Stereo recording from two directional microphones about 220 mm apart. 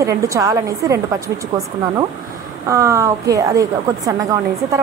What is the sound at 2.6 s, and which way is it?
A woman's voice, 15° right (ahead or behind).